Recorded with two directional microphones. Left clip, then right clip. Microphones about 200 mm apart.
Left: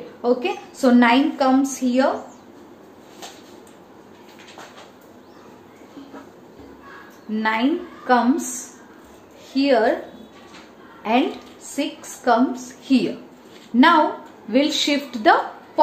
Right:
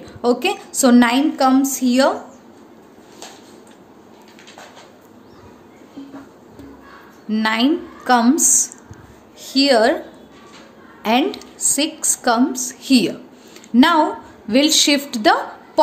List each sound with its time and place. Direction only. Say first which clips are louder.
0.2 s a woman's voice: right 3 dB; 45° right (ahead or behind)
7.2 s a woman's voice: right 3 dB; 45° right (ahead or behind)
9.5 s a woman's voice: right 4 dB; 50° right (ahead or behind)
11.0 s a woman's voice: right 3 dB; 50° right (ahead or behind)